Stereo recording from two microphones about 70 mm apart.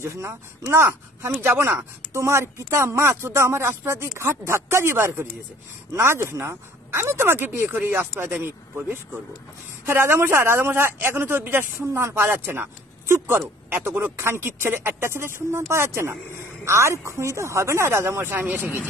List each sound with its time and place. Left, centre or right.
0.0 s speech: right
13.7 s speech: right